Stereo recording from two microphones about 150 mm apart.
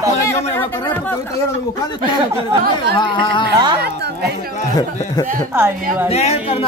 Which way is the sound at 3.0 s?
30° left (ahead or behind).